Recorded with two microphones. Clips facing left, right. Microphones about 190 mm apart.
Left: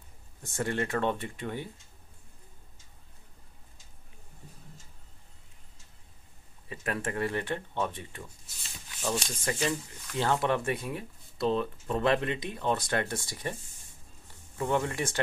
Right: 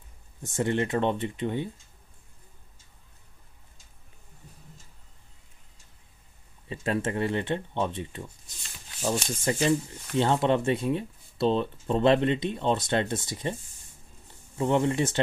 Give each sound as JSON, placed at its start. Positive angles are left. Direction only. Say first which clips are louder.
{"t": 0.5, "sound": "speech", "louder": "right 4 dB", "side_deg": -20}
{"t": 6.7, "sound": "speech", "louder": "right 5 dB", "side_deg": -25}
{"t": 14.2, "sound": "a sound", "louder": "right 5 dB", "side_deg": -25}